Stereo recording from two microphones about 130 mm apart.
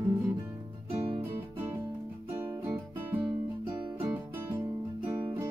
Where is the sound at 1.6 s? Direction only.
15° right (ahead or behind).